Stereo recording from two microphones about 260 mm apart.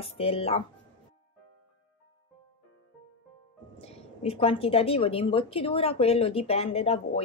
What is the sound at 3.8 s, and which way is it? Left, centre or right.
A woman's voice, left.